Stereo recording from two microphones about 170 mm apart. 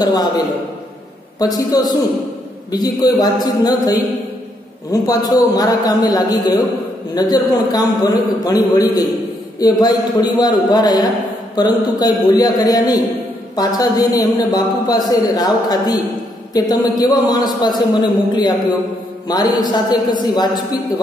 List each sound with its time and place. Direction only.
0.0 s speech: 25° left (ahead or behind)
1.4 s speech: 20° left (ahead or behind)
5.2 s speech: 25° left (ahead or behind)